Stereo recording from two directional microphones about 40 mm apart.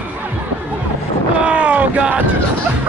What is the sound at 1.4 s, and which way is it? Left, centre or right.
Boat, right.